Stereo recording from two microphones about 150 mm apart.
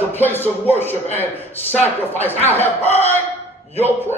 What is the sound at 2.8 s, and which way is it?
Speech, 45° left (ahead or behind).